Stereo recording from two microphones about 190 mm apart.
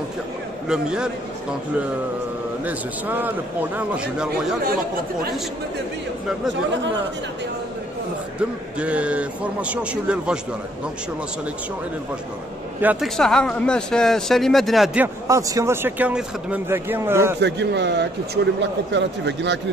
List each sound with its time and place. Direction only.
0.7 s speech: 5° right (ahead or behind)
2.6 s speech: 10° right (ahead or behind)
8.7 s speech: 5° right (ahead or behind)
12.8 s speech: centre (ahead or behind)
15.2 s speech: 15° right (ahead or behind)
17.4 s a man's voice: 65° right (ahead or behind)